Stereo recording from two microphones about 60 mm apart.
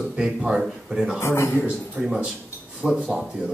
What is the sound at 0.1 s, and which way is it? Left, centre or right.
Speech, centre.